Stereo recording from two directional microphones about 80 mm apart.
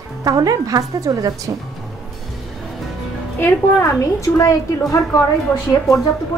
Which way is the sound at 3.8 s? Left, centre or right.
Left.